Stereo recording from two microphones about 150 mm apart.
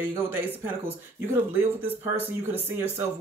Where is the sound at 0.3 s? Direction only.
15° right (ahead or behind).